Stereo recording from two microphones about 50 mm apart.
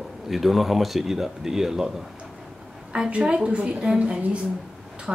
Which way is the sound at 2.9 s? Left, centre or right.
Centre.